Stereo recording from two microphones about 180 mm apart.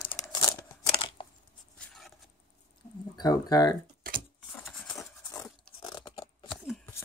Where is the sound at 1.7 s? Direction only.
5° left (ahead or behind).